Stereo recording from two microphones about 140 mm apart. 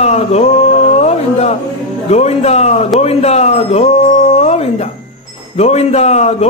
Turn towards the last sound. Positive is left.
turn(degrees=50)  # may be behind; listen again after turning